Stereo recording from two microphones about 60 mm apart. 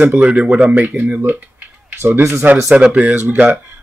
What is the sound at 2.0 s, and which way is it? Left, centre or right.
Speech, right.